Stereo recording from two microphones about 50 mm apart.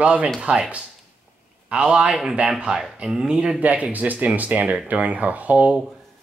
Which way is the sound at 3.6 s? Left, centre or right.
Right.